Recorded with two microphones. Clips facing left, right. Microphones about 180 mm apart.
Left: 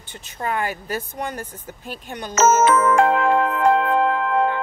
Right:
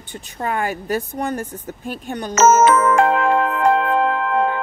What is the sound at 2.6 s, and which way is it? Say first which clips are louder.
Music: right 2 dB; 80° right.